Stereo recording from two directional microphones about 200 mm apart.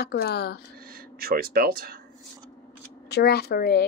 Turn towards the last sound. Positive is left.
turn(degrees=50)  # may be behind; listen again after turning